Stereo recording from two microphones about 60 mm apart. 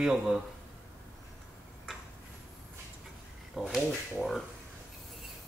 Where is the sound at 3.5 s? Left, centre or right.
Centre.